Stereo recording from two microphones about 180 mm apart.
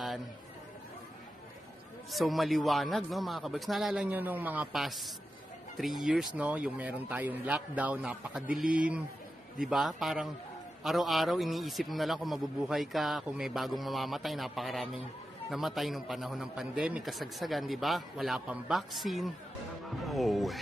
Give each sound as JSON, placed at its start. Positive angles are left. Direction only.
{"t": 2.0, "sound": "a man's voice", "side_deg": 0}